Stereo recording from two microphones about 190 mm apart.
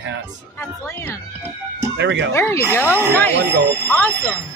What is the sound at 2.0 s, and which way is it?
Speech, 70° right (ahead or behind).